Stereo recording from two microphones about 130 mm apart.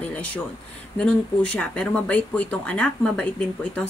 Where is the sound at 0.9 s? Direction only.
10° left (ahead or behind).